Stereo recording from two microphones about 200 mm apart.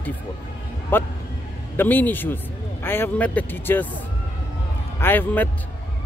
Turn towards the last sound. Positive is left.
turn(degrees=10)  # may be behind; listen again after turning